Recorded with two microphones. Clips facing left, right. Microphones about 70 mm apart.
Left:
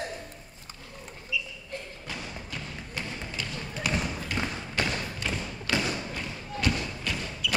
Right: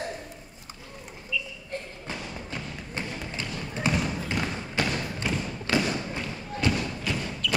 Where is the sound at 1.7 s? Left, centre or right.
Right.